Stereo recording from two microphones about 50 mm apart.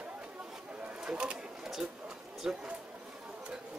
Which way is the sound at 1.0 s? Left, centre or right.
Centre.